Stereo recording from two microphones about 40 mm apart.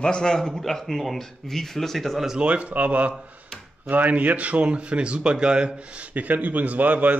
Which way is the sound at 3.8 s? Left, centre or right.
Right.